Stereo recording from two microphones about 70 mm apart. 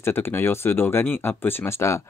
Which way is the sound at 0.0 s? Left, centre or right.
Left.